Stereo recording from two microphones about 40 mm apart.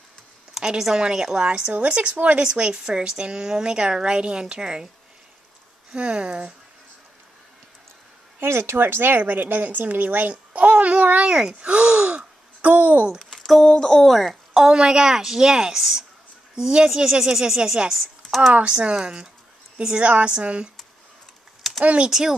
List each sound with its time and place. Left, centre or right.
0.6 s speech: centre
1.7 s a woman's voice: right
2.7 s a woman's voice: centre
5.9 s a woman's voice: right
8.4 s a woman's voice: right
10.3 s a child's voice: right
11.4 s gasp: right
13.2 s a sound: centre
13.6 s speech: centre
14.0 s a woman's voice: centre
14.6 s speech: centre
18.2 s a sound: centre
18.7 s a woman's voice: centre
21.8 s a woman's voice: right